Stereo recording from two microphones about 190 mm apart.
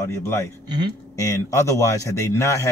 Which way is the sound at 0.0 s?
15° left (ahead or behind).